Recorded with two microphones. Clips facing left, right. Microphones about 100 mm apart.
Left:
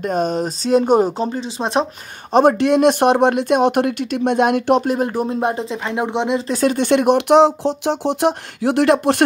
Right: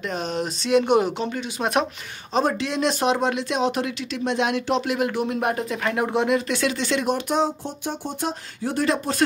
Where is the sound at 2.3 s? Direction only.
55° left (ahead or behind).